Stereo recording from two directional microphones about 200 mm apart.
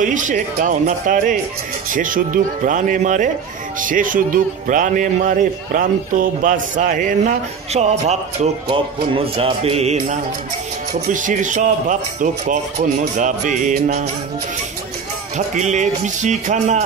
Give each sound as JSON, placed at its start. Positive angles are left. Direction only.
{"t": 0.0, "sound": "speech", "side_deg": -40}
{"t": 15.3, "sound": "speech", "side_deg": -35}